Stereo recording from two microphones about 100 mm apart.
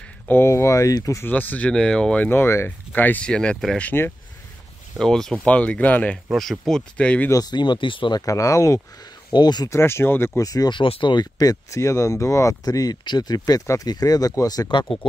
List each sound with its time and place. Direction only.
0.3 s speech: 25° left (ahead or behind)
1.2 s speech: 15° left (ahead or behind)
2.2 s speech: 25° left (ahead or behind)
4.9 s speech: 5° left (ahead or behind)
6.3 s speech: centre (ahead or behind)
7.2 s speech: 40° left (ahead or behind); by 8.2 s 55° left (ahead or behind)
8.3 s speech: 30° left (ahead or behind)
9.3 s speech: 45° left (ahead or behind)
9.7 s speech: 25° left (ahead or behind)
10.7 s speech: 55° left (ahead or behind); by 14.7 s 35° left (ahead or behind)
14.7 s speech: 55° left (ahead or behind)